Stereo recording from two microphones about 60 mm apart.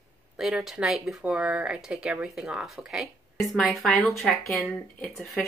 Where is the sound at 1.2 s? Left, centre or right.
Centre.